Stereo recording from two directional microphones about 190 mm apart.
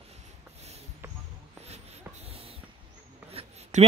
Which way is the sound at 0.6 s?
35° right (ahead or behind).